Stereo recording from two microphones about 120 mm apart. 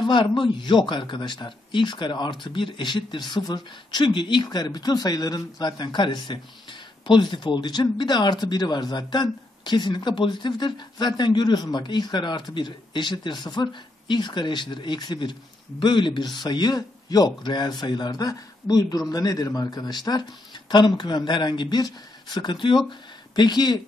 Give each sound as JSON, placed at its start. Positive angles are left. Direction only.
{"t": 0.0, "sound": "speech", "side_deg": 40}